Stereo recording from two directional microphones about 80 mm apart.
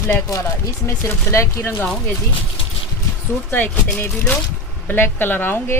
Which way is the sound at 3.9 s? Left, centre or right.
Left.